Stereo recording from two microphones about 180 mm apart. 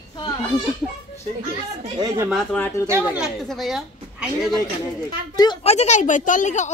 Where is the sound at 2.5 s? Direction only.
10° left (ahead or behind).